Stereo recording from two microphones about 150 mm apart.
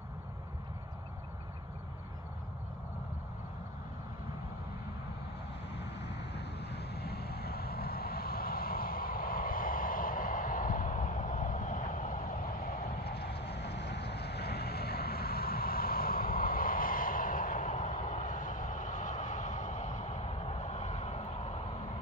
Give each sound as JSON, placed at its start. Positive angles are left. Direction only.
{"t": 6.3, "sound": "vehicle", "side_deg": 90}
{"t": 12.6, "sound": "vehicle", "side_deg": 90}